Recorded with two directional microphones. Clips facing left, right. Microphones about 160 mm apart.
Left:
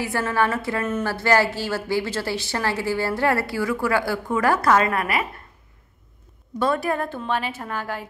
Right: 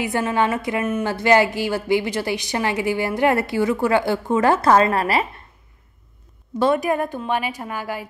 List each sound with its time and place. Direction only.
0.0 s a woman's voice: 20° right (ahead or behind)
6.6 s a woman's voice: 20° right (ahead or behind)